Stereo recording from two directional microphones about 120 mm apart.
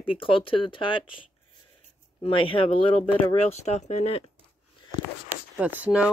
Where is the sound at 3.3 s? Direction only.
65° left (ahead or behind).